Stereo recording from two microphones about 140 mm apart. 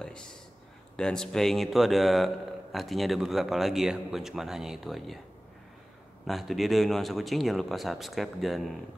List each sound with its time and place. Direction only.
0.9 s a man's voice: 5° left (ahead or behind)
6.2 s a man's voice: centre (ahead or behind)